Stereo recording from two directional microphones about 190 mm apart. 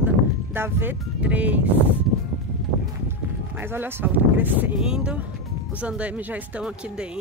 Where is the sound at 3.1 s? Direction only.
10° right (ahead or behind).